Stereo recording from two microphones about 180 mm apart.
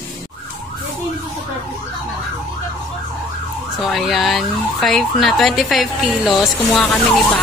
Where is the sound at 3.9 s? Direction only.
Centre (ahead or behind).